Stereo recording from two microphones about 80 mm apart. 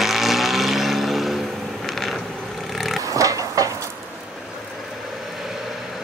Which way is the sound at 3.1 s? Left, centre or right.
Right.